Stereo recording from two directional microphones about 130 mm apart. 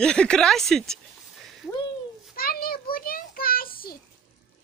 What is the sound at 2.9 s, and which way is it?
Speech, 90° left.